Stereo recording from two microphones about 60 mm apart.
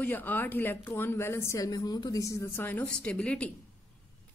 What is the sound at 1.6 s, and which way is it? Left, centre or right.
Speech, left.